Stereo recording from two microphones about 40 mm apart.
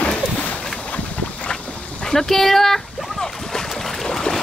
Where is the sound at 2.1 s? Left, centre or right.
Centre.